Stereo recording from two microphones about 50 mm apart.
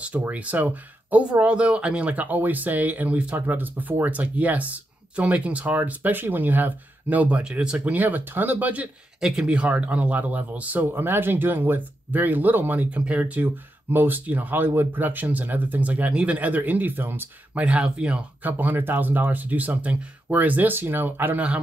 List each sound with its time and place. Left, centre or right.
0.3 s speech: right
7.4 s speech: centre
7.8 s speech: right
9.2 s speech: right
10.9 s speech: right
14.2 s speech: right
14.7 s speech: right
16.1 s speech: right
16.3 s speech: right
17.6 s speech: right
18.4 s speech: right
20.2 s speech: right